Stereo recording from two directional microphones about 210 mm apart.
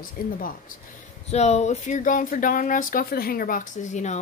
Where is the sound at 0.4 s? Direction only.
40° left (ahead or behind).